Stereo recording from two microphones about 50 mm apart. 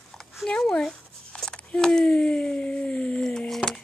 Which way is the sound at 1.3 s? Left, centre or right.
Left.